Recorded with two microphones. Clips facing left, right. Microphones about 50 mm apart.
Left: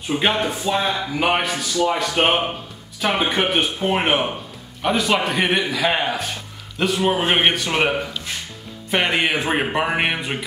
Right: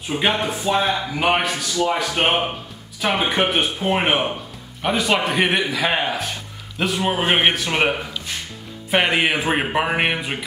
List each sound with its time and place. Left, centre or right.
0.1 s a man's voice: centre